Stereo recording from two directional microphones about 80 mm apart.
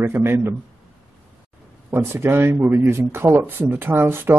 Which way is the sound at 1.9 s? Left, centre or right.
Right.